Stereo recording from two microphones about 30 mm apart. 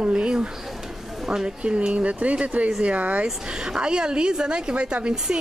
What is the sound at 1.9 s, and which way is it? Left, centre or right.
Speech, right.